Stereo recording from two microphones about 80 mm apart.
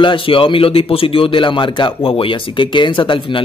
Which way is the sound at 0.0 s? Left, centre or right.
Left.